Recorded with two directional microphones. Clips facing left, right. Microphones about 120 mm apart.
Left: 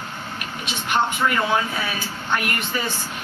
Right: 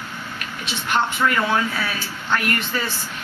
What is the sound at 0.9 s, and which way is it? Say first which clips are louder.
Speech: even; 20° left (ahead or behind).